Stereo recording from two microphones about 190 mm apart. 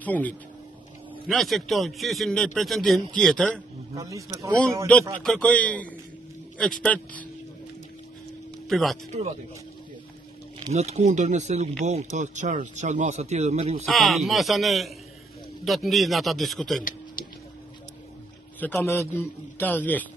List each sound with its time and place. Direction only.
0.0 s a man's voice: 10° left (ahead or behind)
3.9 s speech: 15° right (ahead or behind)
5.2 s a man's voice: 5° left (ahead or behind)
8.6 s speech: centre (ahead or behind)
10.7 s speech: 35° right (ahead or behind)
13.8 s a man's voice: centre (ahead or behind)
18.6 s a man's voice: 10° left (ahead or behind)